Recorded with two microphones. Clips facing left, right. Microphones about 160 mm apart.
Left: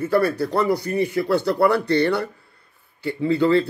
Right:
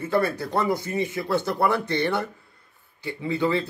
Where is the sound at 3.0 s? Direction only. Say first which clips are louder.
Left 7 dB; 60° left (ahead or behind).